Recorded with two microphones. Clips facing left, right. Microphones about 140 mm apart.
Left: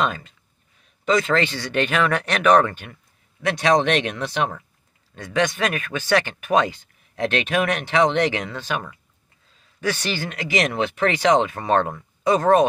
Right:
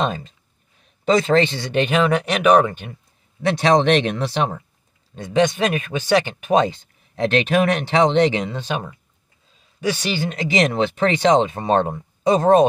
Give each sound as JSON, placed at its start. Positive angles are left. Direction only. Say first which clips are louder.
{"t": 0.0, "sound": "speech", "louder": "right 1 dB", "side_deg": -25}
{"t": 3.4, "sound": "speech", "louder": "right 3 dB", "side_deg": -30}